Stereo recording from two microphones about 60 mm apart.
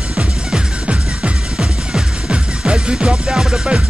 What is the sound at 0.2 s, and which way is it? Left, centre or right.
Music, centre.